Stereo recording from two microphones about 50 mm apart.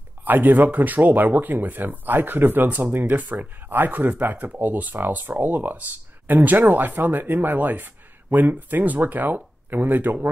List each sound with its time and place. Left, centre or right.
0.2 s speech: right